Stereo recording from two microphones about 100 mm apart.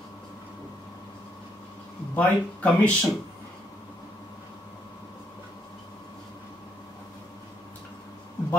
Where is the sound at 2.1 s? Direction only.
15° left (ahead or behind).